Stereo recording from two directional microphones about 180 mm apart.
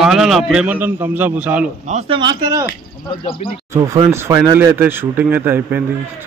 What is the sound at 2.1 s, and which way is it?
Speech, 25° right (ahead or behind).